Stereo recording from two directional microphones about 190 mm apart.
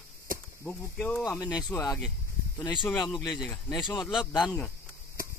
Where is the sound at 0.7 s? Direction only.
5° left (ahead or behind).